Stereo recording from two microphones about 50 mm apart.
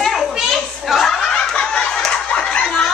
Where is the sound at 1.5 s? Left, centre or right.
Centre.